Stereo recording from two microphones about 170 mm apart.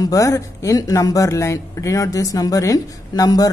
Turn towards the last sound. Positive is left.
turn(degrees=20)  # may be behind; listen again after turning